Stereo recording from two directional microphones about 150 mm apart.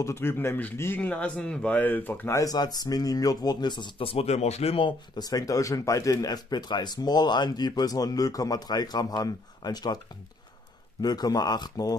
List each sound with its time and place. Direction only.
0.0 s speech: 15° left (ahead or behind)
11.0 s speech: 25° left (ahead or behind)